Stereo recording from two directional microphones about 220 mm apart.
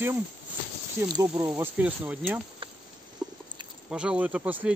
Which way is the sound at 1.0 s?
20° right (ahead or behind).